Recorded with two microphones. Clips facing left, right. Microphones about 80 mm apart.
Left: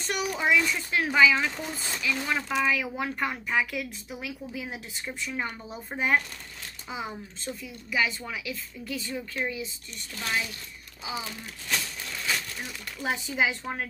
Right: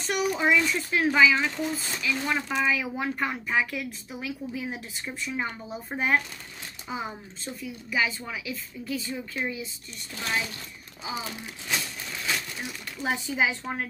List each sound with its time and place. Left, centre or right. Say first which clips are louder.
0.0 s speech: right 3 dB; centre
10.2 s a woman's voice: right 1 dB; right
11.7 s a sound: even; centre